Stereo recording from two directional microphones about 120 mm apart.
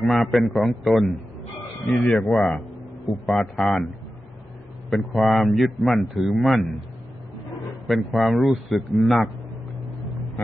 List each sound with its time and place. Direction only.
0.0 s a man's voice: centre (ahead or behind)
4.8 s a man's voice: centre (ahead or behind)
7.8 s a man's voice: centre (ahead or behind)